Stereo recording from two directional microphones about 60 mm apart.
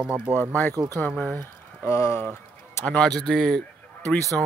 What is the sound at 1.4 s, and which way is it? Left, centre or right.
Speech, left.